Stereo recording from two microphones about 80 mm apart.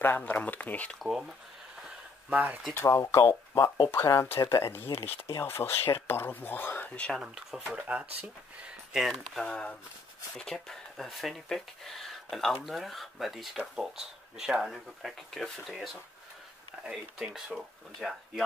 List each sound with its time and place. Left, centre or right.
0.0 s speech: left
0.9 s speech: centre
2.2 s speech: centre
2.7 s speech: left
7.2 s speech: centre
9.4 s speech: centre